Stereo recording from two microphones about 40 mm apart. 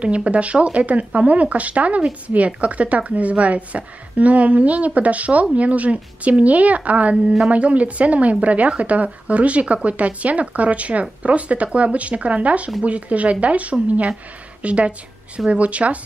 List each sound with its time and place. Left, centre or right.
0.0 s a woman's voice: right